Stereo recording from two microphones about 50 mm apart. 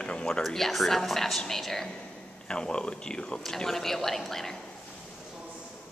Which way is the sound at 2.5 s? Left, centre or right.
Centre.